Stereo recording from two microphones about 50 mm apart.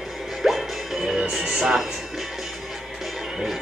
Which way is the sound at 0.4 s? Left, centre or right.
Centre.